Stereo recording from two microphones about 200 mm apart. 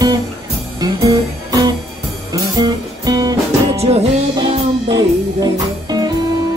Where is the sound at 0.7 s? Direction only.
15° right (ahead or behind).